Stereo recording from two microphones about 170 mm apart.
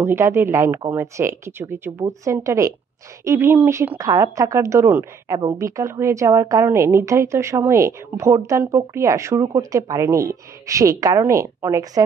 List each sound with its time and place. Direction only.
0.0 s a woman's voice: 15° right (ahead or behind)